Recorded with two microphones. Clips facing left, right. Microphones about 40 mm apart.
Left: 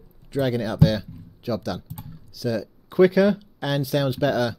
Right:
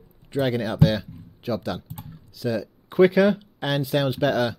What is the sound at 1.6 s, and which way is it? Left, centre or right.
Speech, right.